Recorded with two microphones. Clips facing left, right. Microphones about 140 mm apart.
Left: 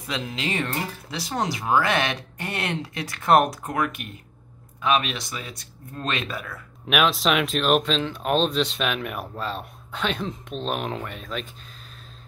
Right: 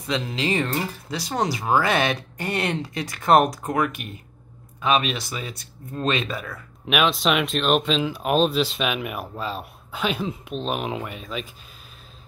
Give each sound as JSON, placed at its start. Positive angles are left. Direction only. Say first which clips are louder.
{"t": 0.0, "sound": "speech", "louder": "right 4 dB", "side_deg": 0}